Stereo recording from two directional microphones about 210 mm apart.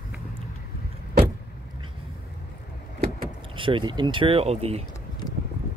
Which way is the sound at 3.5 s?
25° right (ahead or behind).